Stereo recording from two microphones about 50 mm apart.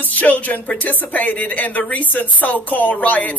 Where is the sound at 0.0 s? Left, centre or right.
Left.